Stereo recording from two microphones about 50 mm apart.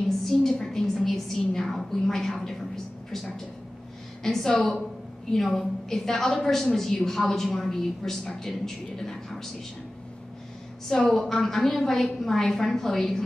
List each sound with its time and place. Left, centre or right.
0.2 s a woman's voice: centre
4.2 s a woman's voice: centre
10.9 s a woman's voice: centre